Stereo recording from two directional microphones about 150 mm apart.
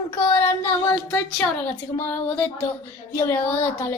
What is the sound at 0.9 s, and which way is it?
Speech, 10° left (ahead or behind).